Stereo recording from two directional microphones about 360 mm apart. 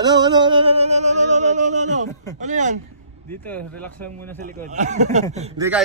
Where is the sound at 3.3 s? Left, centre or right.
Centre.